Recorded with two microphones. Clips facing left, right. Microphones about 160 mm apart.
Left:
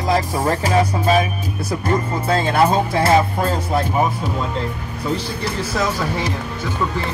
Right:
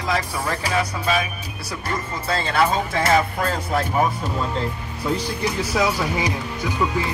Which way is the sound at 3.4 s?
15° left (ahead or behind).